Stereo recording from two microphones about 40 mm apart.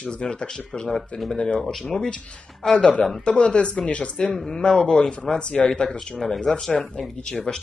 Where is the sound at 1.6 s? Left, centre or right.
Centre.